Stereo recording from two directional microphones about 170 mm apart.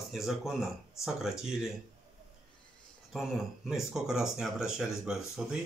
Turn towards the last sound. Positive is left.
turn(degrees=-5)  # may be behind; listen again after turning